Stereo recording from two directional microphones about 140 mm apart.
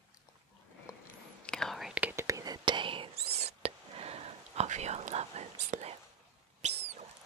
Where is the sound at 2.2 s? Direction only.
25° right (ahead or behind); by 5.9 s 50° right (ahead or behind).